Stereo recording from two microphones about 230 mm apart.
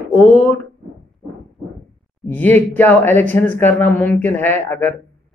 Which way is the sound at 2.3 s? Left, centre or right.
Centre.